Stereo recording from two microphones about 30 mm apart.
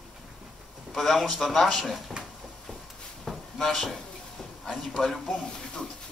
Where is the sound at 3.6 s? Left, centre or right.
Centre.